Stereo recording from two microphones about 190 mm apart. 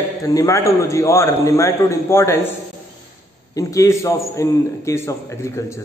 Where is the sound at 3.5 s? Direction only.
15° left (ahead or behind).